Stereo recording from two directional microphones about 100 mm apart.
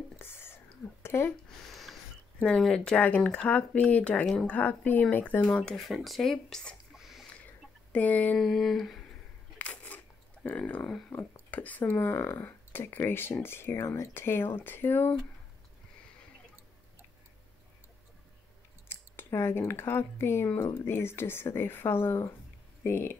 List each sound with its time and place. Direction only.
0.2 s whispering: 25° left (ahead or behind)
1.0 s a sound: 25° left (ahead or behind)
1.7 s a sound: centre (ahead or behind)
2.4 s speech: 10° left (ahead or behind)
5.8 s speech: centre (ahead or behind)
6.9 s a sound: centre (ahead or behind)
7.9 s speech: 15° left (ahead or behind)
8.4 s speech: centre (ahead or behind)
9.6 s a sound: 15° left (ahead or behind)
11.1 s speech: 15° left (ahead or behind)
18.9 s scissors: 25° left (ahead or behind)
19.7 s speech: 25° left (ahead or behind)